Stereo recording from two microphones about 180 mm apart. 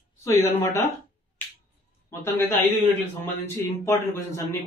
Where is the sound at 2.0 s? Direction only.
15° left (ahead or behind).